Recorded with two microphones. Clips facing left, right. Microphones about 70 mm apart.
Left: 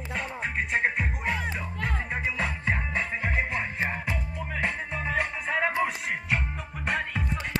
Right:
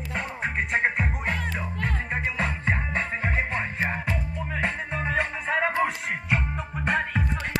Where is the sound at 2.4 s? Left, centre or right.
Right.